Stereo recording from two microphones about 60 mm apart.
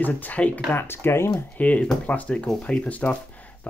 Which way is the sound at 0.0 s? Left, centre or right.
Left.